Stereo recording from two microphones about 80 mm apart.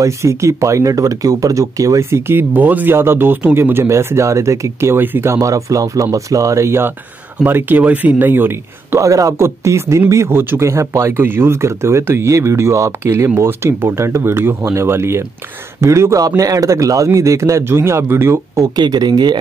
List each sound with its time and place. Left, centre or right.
0.0 s speech: right
5.3 s speech: right
9.0 s speech: right
18.8 s speech: right